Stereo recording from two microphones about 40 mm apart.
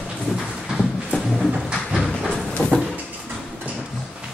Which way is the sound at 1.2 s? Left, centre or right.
Centre.